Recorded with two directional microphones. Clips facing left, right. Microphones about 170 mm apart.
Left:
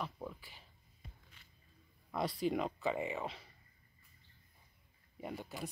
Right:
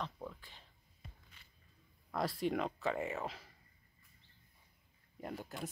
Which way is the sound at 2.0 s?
Centre (ahead or behind).